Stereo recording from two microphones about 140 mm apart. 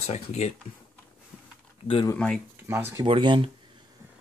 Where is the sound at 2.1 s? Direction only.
10° left (ahead or behind).